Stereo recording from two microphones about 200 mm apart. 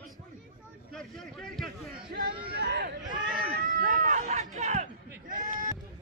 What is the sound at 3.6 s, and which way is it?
Cat, 45° right (ahead or behind).